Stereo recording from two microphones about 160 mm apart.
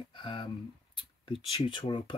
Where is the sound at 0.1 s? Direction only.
30° left (ahead or behind).